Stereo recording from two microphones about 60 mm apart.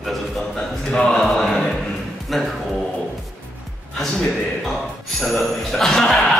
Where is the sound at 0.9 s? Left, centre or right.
Centre.